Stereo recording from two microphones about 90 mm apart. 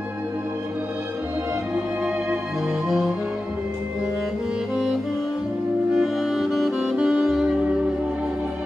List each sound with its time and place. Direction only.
2.9 s music: 5° right (ahead or behind)
5.9 s saxophone: 5° right (ahead or behind)